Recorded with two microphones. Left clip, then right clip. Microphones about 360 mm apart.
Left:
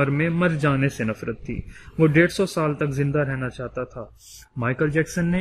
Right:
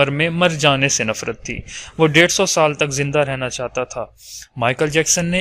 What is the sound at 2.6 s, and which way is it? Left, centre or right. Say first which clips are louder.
Speech: right 8 dB; centre.